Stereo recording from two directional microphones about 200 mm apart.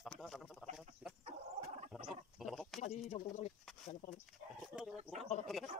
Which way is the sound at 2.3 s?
Centre (ahead or behind).